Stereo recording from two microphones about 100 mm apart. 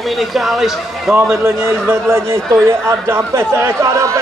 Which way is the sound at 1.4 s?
25° right (ahead or behind).